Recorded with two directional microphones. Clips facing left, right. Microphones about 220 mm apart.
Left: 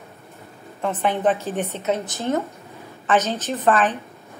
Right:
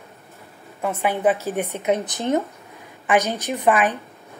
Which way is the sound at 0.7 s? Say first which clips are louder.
Even; 10° right (ahead or behind).